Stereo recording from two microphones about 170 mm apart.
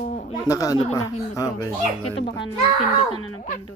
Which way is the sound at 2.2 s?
30° left (ahead or behind).